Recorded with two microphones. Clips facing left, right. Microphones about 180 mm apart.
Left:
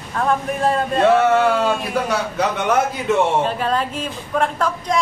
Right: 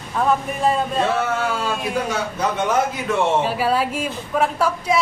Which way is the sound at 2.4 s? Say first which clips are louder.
Left 2 dB; 75° left (ahead or behind).